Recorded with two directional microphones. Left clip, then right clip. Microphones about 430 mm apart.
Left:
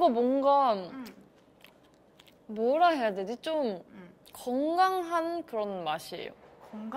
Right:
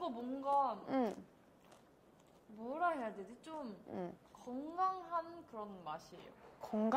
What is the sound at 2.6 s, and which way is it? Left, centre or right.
A woman's voice, left.